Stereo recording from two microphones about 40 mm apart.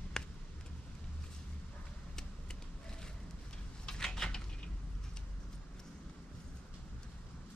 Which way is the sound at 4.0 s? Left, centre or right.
Centre.